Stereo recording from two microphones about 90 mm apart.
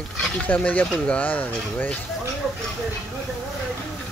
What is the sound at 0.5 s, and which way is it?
Speech, 15° left (ahead or behind).